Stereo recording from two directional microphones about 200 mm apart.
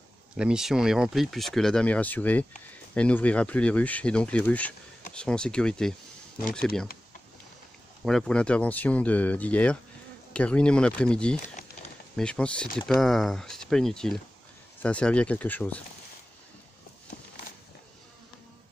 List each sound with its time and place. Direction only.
0.4 s speech: 5° right (ahead or behind)
8.0 s speech: centre (ahead or behind)
11.3 s a sound: 35° left (ahead or behind)
12.2 s speech: 5° left (ahead or behind)